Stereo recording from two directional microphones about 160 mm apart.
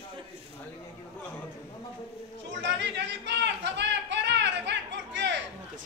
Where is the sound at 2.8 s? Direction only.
90° right.